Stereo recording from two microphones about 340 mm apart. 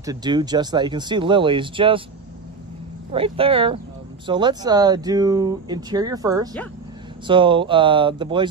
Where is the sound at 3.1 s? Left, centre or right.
Centre.